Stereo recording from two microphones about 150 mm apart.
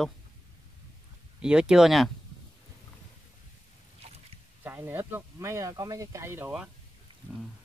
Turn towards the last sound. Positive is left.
turn(degrees=-15)  # may be behind; listen again after turning